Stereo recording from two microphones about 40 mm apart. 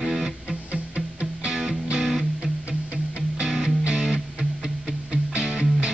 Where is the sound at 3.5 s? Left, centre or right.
Centre.